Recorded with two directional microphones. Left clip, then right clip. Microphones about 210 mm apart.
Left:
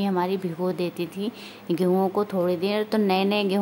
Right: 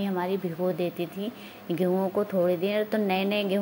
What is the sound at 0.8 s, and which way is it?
Speech, 45° left (ahead or behind).